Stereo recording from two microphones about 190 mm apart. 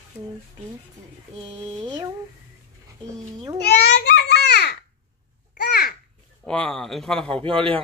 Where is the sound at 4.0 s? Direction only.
60° left (ahead or behind).